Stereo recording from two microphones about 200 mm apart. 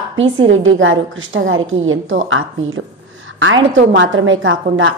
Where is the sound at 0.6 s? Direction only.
80° right.